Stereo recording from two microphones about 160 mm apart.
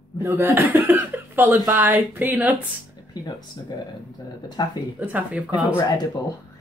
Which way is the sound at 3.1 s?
25° left (ahead or behind).